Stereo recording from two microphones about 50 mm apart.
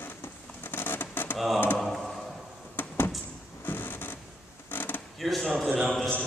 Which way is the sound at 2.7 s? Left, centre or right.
Left.